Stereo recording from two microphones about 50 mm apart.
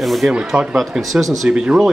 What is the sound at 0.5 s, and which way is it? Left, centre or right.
Speech, right.